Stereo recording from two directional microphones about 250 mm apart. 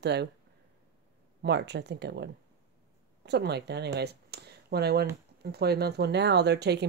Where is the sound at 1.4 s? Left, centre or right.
Right.